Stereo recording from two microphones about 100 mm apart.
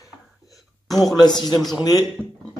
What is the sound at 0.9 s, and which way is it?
Speech, centre (ahead or behind).